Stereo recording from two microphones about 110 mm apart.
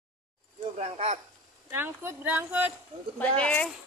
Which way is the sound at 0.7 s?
85° right.